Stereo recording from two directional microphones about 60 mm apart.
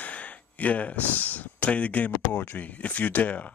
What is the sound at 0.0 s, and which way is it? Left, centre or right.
Speech, left.